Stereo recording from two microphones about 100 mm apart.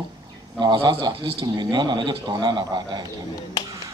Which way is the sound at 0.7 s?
55° right (ahead or behind).